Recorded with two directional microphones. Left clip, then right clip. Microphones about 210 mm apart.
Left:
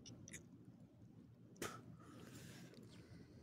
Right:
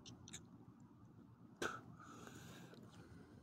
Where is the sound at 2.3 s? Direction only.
10° left (ahead or behind).